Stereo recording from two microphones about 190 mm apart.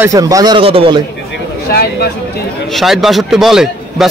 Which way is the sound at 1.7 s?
55° left (ahead or behind).